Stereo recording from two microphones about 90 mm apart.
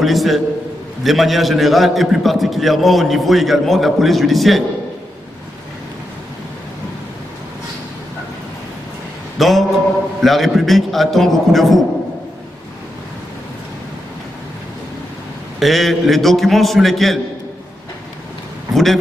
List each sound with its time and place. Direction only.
0.0 s a man's voice: centre (ahead or behind)
9.4 s a man's voice: centre (ahead or behind)
15.6 s a man's voice: centre (ahead or behind)